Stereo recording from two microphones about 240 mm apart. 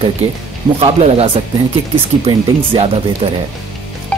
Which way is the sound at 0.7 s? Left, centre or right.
Right.